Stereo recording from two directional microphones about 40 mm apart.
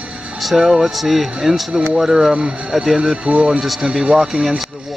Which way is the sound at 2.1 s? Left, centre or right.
Right.